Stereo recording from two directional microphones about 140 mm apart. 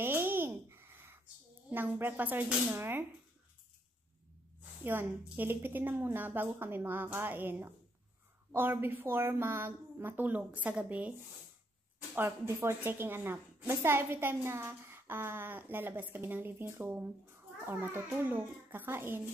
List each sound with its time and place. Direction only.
0.0 s a sound: 15° right (ahead or behind)
1.7 s a woman's voice: 15° right (ahead or behind)
4.8 s a woman's voice: 15° right (ahead or behind)
12.2 s a woman's voice: 15° right (ahead or behind)